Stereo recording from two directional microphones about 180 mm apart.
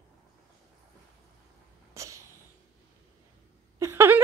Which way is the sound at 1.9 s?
15° right (ahead or behind).